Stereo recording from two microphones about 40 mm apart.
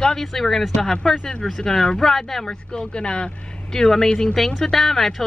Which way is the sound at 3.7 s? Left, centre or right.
Centre.